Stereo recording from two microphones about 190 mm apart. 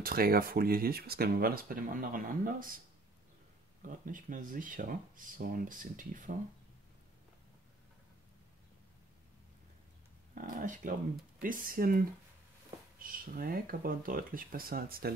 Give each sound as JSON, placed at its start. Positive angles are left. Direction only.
{"t": 0.0, "sound": "speech", "side_deg": -50}
{"t": 3.8, "sound": "speech", "side_deg": -45}
{"t": 10.3, "sound": "speech", "side_deg": -45}